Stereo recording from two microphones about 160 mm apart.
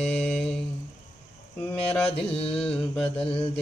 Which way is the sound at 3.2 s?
35° left (ahead or behind).